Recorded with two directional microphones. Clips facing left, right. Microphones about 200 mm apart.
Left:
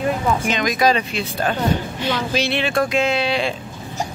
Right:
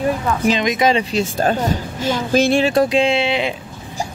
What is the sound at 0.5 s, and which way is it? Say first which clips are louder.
Speech: right 4 dB; 25° right (ahead or behind).